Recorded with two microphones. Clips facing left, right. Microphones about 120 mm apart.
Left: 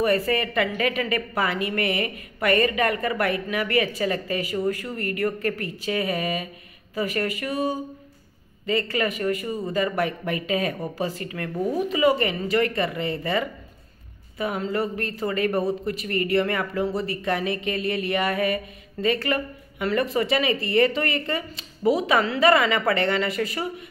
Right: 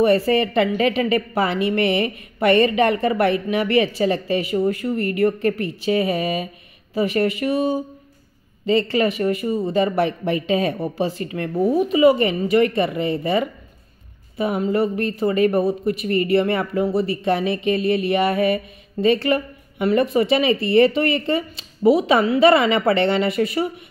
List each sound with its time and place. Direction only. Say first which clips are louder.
0.0 s speech: right 6 dB; 25° right (ahead or behind)